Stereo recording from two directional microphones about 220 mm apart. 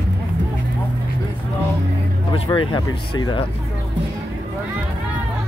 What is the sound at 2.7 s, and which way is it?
Speech, 20° left (ahead or behind).